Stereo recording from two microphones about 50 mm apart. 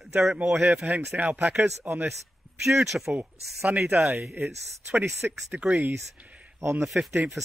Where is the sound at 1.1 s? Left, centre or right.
Right; by 3.9 s centre.